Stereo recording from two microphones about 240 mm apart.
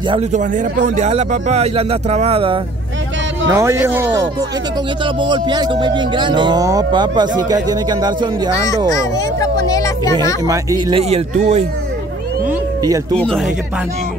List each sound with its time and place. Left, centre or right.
0.1 s speech: right
3.5 s speech: centre
8.9 s speech: centre
10.4 s speech: centre
12.4 s cat: centre